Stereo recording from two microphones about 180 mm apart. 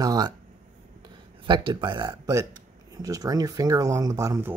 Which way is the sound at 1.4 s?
25° right (ahead or behind).